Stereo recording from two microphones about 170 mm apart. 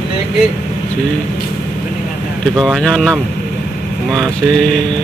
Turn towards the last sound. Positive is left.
turn(degrees=5)  # may be behind; listen again after turning